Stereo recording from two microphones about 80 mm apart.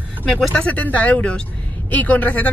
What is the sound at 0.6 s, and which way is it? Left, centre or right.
Music, centre.